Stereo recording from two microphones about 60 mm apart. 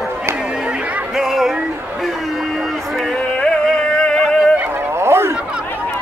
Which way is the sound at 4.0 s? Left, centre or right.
Centre.